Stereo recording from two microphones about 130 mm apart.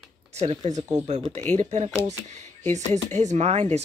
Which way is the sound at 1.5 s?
60° right (ahead or behind).